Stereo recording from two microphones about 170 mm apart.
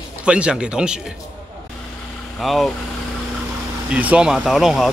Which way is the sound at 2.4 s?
Centre (ahead or behind).